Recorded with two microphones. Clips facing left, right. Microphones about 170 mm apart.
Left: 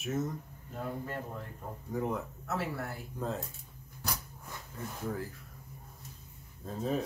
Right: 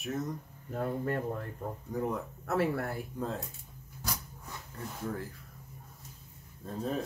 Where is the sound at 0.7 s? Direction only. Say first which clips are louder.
Right 6 dB; 55° right (ahead or behind).